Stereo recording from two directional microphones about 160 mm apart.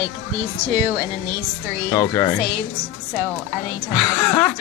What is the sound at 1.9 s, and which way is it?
Speech, 15° left (ahead or behind).